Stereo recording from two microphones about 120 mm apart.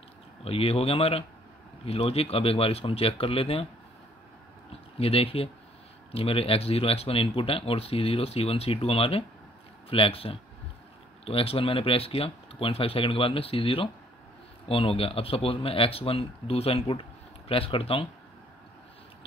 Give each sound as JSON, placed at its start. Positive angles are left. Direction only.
{"t": 0.4, "sound": "speech", "side_deg": 55}
{"t": 4.9, "sound": "speech", "side_deg": 55}